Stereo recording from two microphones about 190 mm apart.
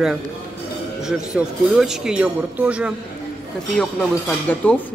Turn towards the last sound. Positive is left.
turn(degrees=10)  # may be behind; listen again after turning